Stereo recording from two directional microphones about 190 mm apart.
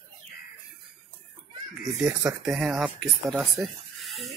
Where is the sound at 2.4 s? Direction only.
5° right (ahead or behind).